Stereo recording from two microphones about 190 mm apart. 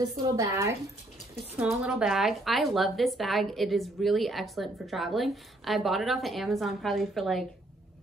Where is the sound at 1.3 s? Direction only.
5° right (ahead or behind).